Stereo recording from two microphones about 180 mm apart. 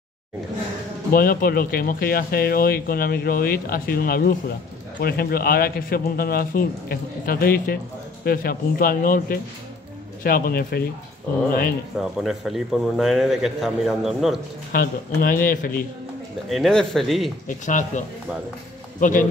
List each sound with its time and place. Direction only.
1.1 s a man's voice: 55° left (ahead or behind)
12.0 s a man's voice: centre (ahead or behind)
14.7 s speech: 50° left (ahead or behind)
16.4 s a man's voice: centre (ahead or behind)
17.5 s speech: 45° left (ahead or behind)